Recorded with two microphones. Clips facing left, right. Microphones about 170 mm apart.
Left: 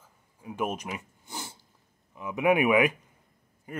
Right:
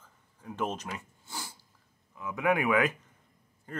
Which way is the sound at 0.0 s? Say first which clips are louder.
Left 2 dB; 10° left (ahead or behind).